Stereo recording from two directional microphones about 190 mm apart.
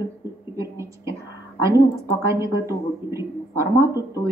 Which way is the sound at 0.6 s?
15° right (ahead or behind).